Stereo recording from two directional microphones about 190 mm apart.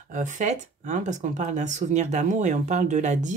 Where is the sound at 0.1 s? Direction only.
40° right (ahead or behind).